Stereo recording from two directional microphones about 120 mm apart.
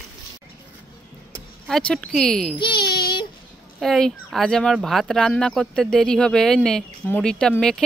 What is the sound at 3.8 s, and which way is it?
Speech, 5° left (ahead or behind).